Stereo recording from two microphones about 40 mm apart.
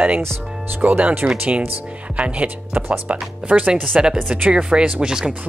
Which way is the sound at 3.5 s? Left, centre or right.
Right.